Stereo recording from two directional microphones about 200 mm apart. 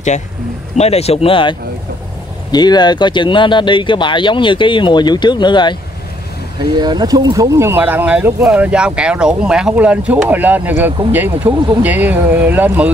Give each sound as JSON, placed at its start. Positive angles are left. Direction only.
{"t": 0.7, "sound": "speech", "side_deg": 30}
{"t": 6.6, "sound": "speech", "side_deg": -20}
{"t": 11.4, "sound": "speech", "side_deg": -25}
{"t": 11.8, "sound": "speech", "side_deg": -10}